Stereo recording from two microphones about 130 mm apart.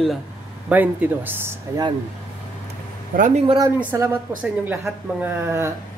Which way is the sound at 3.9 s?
25° right (ahead or behind).